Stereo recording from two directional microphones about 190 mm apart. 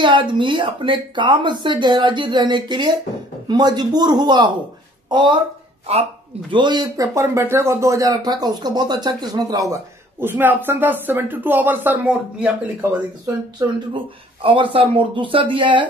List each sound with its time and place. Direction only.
0.0 s speech: 25° right (ahead or behind); by 12.4 s 5° right (ahead or behind)
13.6 s speech: 25° right (ahead or behind)